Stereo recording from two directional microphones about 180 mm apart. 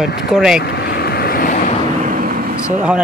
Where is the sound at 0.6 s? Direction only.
65° left (ahead or behind).